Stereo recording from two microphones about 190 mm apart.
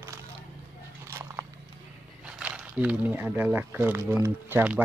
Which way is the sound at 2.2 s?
5° right (ahead or behind).